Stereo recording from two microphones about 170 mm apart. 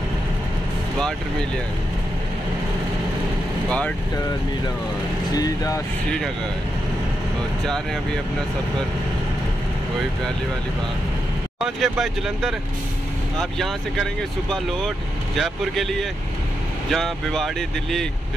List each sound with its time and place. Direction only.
3.6 s speech: 5° left (ahead or behind)
5.3 s speech: 20° left (ahead or behind)
7.6 s speech: 5° left (ahead or behind)
11.6 s speech: centre (ahead or behind)
15.3 s speech: centre (ahead or behind)